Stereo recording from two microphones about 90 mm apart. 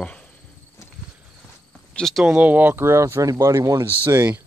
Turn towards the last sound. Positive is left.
turn(degrees=-20)  # may be behind; listen again after turning